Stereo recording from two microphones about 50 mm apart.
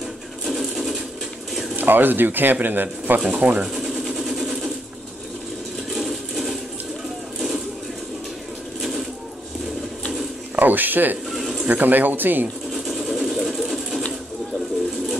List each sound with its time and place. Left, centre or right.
0.5 s a sound: centre
1.8 s speech: right
3.3 s speech: right
3.6 s vehicle: centre
5.9 s a sound: centre
10.5 s speech: right
11.2 s bird: centre
11.6 s speech: right
12.7 s sewing machine: centre